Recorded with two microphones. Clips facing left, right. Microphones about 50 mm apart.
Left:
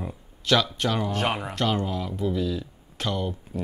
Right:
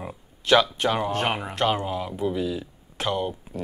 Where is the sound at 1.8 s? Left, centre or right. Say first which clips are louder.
Right 1 dB; centre.